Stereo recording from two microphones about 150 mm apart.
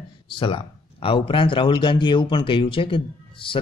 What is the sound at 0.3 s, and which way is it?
Speech, 35° left (ahead or behind).